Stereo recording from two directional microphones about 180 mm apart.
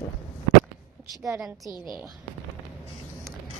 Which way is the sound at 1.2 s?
10° right (ahead or behind).